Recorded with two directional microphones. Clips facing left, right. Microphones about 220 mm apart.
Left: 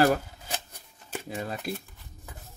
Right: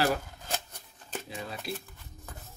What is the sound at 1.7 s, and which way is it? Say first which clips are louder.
Speech: even; 50° left (ahead or behind).